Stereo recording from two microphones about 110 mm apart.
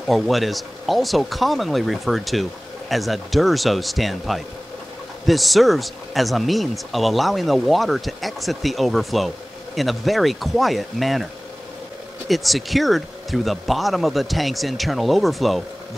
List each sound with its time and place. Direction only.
0.0 s speech: centre (ahead or behind)
12.3 s speech: centre (ahead or behind)